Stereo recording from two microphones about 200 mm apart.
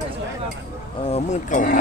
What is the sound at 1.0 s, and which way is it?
Speech, 35° left (ahead or behind).